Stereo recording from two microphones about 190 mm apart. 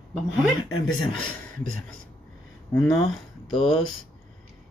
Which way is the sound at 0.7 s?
90° left.